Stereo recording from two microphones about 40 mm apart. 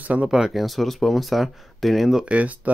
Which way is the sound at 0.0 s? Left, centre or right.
Right.